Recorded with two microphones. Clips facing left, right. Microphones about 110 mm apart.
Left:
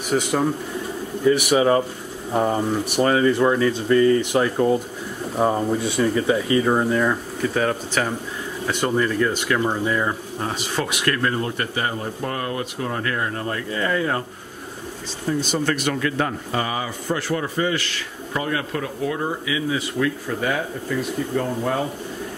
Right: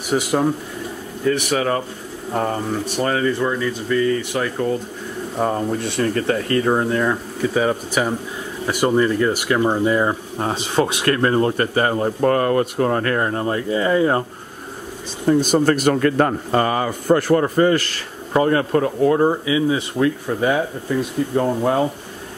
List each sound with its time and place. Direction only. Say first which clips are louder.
0.1 s speech: right 2 dB; 5° right (ahead or behind)
1.2 s speech: left 2 dB; 10° left (ahead or behind)
5.4 s speech: left 1 dB; 5° left (ahead or behind); by 13.3 s 45° right (ahead or behind)
13.3 s speech: right 6 dB; 25° right (ahead or behind)
15.2 s speech: right 7 dB; 50° right (ahead or behind)
19.4 s speech: right 5 dB; 30° right (ahead or behind)